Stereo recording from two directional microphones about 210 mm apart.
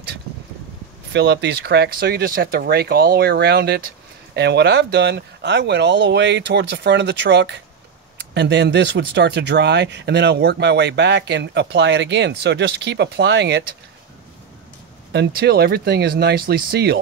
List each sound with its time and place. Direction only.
1.1 s speech: 55° right (ahead or behind)
15.1 s speech: 50° right (ahead or behind)